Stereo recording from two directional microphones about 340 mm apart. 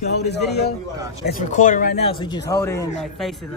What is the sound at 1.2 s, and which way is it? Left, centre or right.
Speech, left.